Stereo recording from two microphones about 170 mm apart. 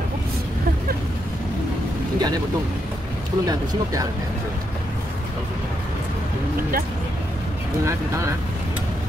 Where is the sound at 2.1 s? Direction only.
25° right (ahead or behind).